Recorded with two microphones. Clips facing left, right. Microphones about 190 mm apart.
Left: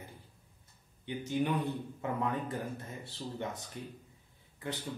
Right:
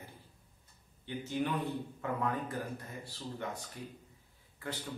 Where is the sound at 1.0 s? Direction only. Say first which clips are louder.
Left 3 dB; 15° left (ahead or behind).